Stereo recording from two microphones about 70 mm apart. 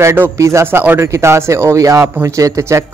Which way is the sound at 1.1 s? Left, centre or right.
Right.